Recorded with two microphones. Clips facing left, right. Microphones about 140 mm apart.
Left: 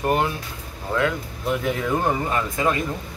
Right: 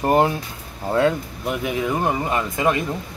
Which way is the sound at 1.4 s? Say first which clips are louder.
Even; 10° right (ahead or behind).